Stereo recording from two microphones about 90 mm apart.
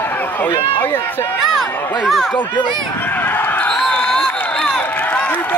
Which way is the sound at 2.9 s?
20° left (ahead or behind).